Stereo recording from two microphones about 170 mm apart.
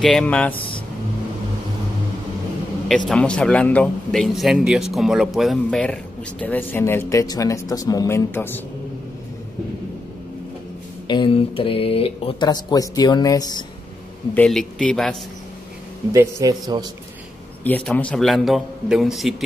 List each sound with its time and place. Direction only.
0.0 s speech: 5° left (ahead or behind)
3.1 s speech: 5° left (ahead or behind)
11.1 s speech: 30° left (ahead or behind)
14.3 s speech: 5° left (ahead or behind)
16.1 s a man's voice: 20° right (ahead or behind)
17.6 s speech: 10° left (ahead or behind)